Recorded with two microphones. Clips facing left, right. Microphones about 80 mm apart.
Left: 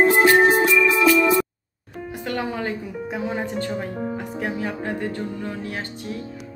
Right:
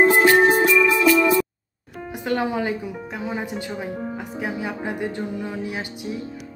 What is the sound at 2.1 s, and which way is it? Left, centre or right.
Speech, centre.